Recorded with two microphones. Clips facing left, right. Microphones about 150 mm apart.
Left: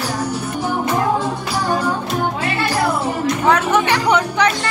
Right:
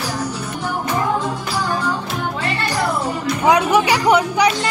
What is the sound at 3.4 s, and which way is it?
Music, 10° right (ahead or behind).